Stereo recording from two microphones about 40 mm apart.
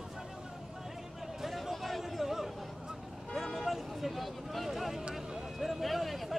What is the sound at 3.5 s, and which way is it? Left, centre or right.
Music, centre.